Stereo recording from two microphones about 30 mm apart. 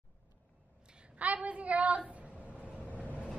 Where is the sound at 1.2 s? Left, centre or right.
Right.